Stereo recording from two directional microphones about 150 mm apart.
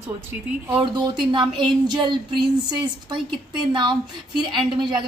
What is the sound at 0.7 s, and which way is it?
Speech, 30° right (ahead or behind).